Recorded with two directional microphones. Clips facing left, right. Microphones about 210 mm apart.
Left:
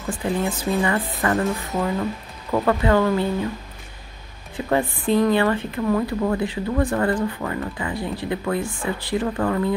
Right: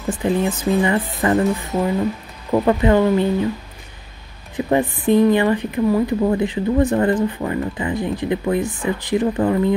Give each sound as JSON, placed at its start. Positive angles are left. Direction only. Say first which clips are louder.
{"t": 0.1, "sound": "speech", "louder": "right 4 dB", "side_deg": -20}
{"t": 4.6, "sound": "speech", "louder": "right 4 dB", "side_deg": -20}